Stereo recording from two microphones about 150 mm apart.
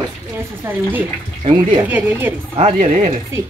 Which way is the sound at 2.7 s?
60° right (ahead or behind).